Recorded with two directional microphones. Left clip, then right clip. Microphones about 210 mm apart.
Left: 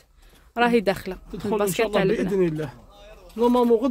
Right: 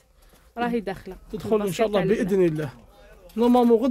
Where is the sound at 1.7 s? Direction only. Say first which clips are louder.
Left 2 dB; 50° right (ahead or behind).